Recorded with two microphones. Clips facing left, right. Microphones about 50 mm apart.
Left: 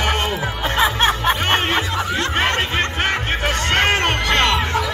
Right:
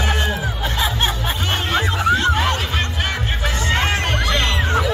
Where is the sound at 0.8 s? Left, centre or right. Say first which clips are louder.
Left 5 dB; left.